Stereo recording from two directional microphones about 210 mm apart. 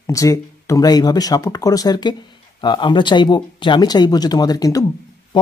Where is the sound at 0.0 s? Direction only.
15° left (ahead or behind).